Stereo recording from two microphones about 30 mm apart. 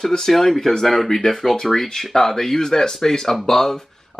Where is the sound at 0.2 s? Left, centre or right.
Centre.